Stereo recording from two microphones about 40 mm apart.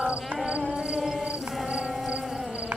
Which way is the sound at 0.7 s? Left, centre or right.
Centre.